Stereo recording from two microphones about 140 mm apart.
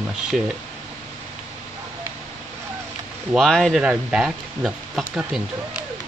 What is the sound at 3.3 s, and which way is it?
Speech, centre (ahead or behind).